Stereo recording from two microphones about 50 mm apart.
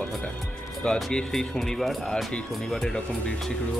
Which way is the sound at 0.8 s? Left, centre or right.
Centre.